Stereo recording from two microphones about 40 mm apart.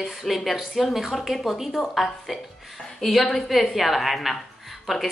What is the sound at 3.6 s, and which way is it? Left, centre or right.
A woman's voice, centre.